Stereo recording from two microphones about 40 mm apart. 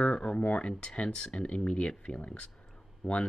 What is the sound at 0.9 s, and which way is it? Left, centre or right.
Speech, left.